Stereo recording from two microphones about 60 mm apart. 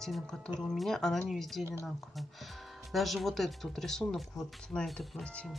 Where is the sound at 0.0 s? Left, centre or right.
Centre.